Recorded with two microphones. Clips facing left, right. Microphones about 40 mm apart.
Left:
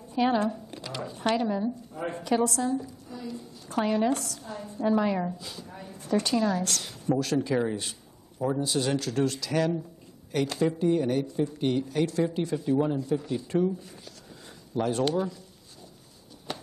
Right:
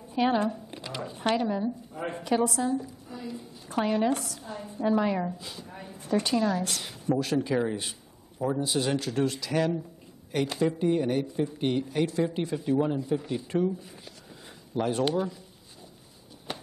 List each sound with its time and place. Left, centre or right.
0.1 s speech: centre
1.3 s speech: centre
4.9 s a woman's voice: centre
5.4 s a sound: centre
5.9 s a woman's voice: centre
8.4 s speech: centre
14.8 s speech: centre
16.5 s a sound: centre